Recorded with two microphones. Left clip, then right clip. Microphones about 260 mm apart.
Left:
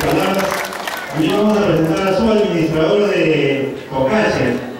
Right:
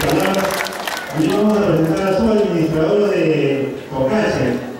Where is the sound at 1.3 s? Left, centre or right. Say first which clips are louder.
Left 1 dB; centre.